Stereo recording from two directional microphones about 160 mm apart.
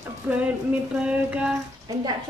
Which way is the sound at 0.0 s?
10° right (ahead or behind).